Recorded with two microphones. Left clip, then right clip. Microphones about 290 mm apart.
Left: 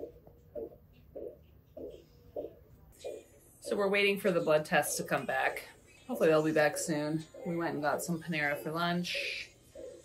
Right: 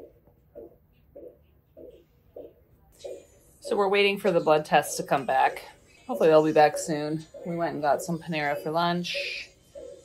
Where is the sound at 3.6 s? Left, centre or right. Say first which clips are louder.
Right 6 dB; centre.